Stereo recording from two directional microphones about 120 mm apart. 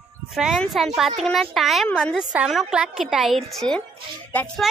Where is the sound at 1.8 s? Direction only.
10° left (ahead or behind).